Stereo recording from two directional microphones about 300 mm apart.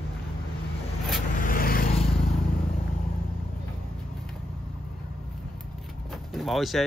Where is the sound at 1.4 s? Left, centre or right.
Left.